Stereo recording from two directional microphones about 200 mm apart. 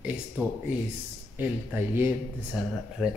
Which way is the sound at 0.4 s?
10° right (ahead or behind).